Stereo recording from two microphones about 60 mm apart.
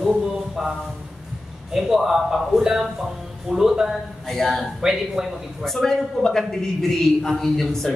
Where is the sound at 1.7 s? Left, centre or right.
Centre.